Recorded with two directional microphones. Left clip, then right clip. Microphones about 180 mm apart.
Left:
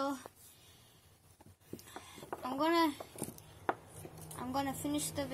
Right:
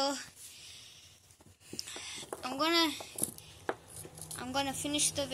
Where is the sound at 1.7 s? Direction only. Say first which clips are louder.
Right 8 dB; 30° left (ahead or behind).